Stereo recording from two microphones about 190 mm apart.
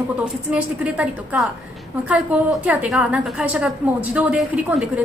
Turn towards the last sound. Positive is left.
turn(degrees=-5)  # may be behind; listen again after turning